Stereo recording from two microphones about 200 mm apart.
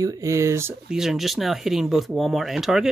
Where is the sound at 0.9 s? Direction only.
Centre (ahead or behind).